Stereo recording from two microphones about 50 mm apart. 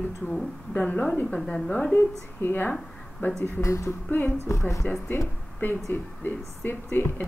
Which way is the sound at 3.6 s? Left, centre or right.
Left.